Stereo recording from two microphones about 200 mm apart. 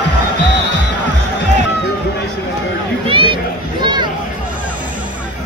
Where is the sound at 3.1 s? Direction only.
25° right (ahead or behind).